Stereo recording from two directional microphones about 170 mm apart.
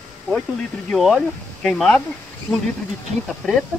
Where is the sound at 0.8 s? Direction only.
Centre (ahead or behind).